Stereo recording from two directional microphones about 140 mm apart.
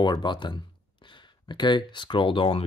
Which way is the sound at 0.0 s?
35° left (ahead or behind).